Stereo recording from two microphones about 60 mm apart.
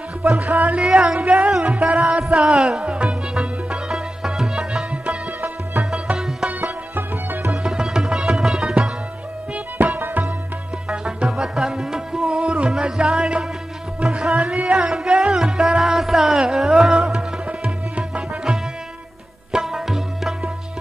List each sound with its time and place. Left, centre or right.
0.3 s speech: right
1.7 s music: right
3.9 s music: centre
5.9 s music: centre
6.6 s music: right
7.5 s music: centre
9.9 s music: right
10.9 s music: centre
19.5 s tabla: centre